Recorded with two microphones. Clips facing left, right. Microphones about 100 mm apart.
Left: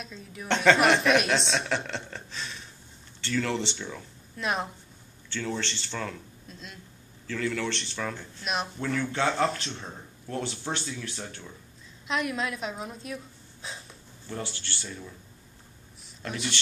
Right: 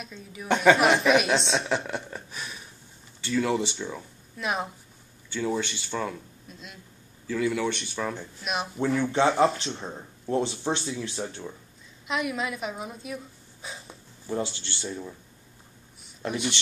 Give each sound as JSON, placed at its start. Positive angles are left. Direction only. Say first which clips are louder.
{"t": 0.0, "sound": "a woman's voice", "louder": "right 1 dB", "side_deg": 0}
{"t": 1.9, "sound": "a sound", "louder": "right 3 dB", "side_deg": -10}
{"t": 3.2, "sound": "speech", "louder": "right 3 dB", "side_deg": -10}
{"t": 12.1, "sound": "a woman's voice", "louder": "right 1 dB", "side_deg": -5}
{"t": 14.2, "sound": "speech", "louder": "right 6 dB", "side_deg": -20}
{"t": 16.3, "sound": "speech", "louder": "right 4 dB", "side_deg": -10}